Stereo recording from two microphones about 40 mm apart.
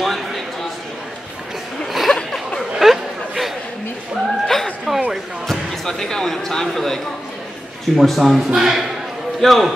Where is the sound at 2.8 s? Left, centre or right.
Centre.